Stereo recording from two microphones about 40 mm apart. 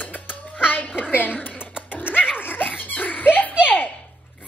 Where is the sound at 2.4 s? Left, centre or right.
Left.